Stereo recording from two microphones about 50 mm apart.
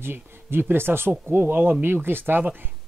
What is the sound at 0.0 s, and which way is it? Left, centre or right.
Speech, right.